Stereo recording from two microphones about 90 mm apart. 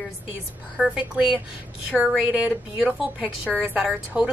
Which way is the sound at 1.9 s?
15° left (ahead or behind).